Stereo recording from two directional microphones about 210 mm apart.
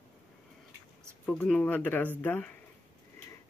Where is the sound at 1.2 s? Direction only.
5° left (ahead or behind).